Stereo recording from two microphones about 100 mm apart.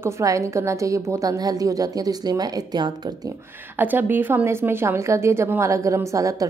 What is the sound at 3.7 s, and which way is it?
Speech, 20° right (ahead or behind).